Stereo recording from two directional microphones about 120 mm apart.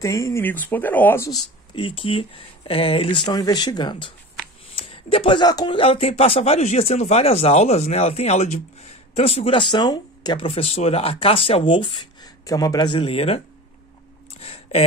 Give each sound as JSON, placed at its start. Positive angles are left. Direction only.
{"t": 0.0, "sound": "speech", "side_deg": 25}
{"t": 1.8, "sound": "speech", "side_deg": 45}
{"t": 5.8, "sound": "speech", "side_deg": 55}
{"t": 12.4, "sound": "speech", "side_deg": 30}
{"t": 14.4, "sound": "speech", "side_deg": 55}